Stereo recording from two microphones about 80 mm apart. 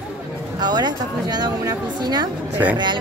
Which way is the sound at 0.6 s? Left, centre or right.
Right.